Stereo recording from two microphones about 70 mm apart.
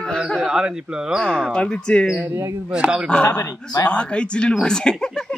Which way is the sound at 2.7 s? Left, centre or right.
Centre.